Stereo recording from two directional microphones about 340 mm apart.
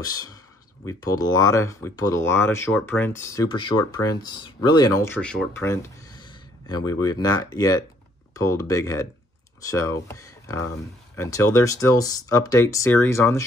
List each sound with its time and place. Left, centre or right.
0.0 s speech: centre